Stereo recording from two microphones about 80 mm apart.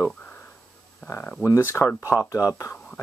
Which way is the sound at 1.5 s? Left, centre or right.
Left.